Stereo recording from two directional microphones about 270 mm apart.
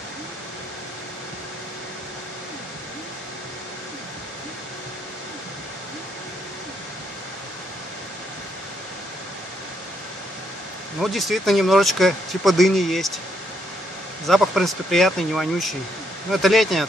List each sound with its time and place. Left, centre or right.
11.0 s speech: centre
14.2 s speech: centre